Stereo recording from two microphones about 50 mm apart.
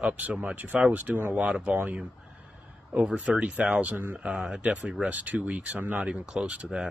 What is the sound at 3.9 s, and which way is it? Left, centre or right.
Speech, right.